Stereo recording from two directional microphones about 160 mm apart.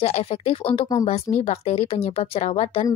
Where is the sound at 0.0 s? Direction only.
40° left (ahead or behind).